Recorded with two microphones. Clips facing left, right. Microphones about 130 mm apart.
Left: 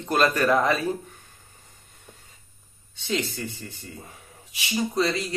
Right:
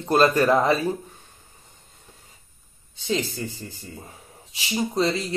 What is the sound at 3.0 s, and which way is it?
Speech, 30° right (ahead or behind).